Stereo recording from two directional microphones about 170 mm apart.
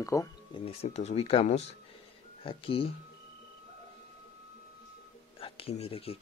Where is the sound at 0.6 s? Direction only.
40° left (ahead or behind).